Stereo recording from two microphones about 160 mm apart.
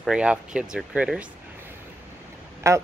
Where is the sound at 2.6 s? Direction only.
20° right (ahead or behind).